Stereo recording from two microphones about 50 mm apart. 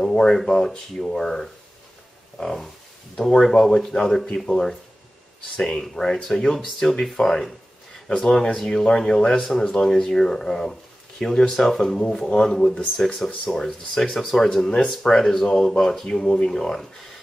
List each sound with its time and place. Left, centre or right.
0.0 s a sound: centre
0.7 s speech: centre
8.5 s speech: centre